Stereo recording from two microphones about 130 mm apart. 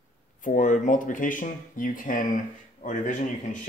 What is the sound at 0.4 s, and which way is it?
Speech, 90° left.